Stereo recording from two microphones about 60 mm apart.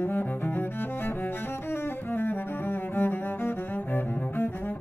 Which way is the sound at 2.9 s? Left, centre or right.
Left.